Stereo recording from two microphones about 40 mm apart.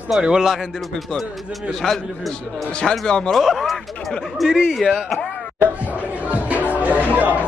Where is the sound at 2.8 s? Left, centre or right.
Left.